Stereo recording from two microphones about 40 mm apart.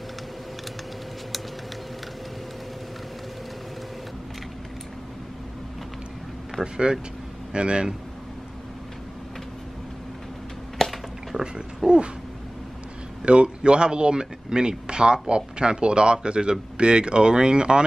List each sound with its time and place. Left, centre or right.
6.6 s speech: right
10.8 s a sound: centre
11.3 s speech: right
13.2 s speech: right